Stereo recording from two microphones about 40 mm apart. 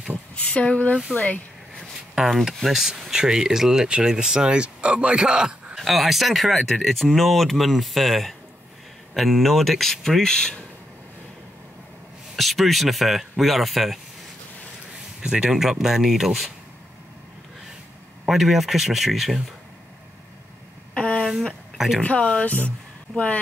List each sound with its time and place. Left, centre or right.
0.5 s speech: left
2.2 s speech: centre
5.8 s speech: centre
12.4 s speech: centre
15.2 s speech: centre
15.5 s speech: centre
18.2 s speech: centre
20.9 s a sound: left
21.7 s speech: centre
22.0 s speech: left